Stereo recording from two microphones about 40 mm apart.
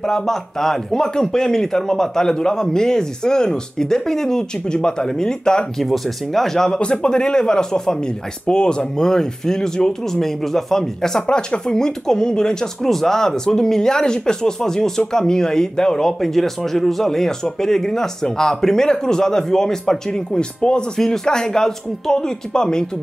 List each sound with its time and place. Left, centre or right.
0.0 s speech: centre
5.8 s speech: centre
6.8 s speech: left
10.2 s speech: centre
11.2 s speech: left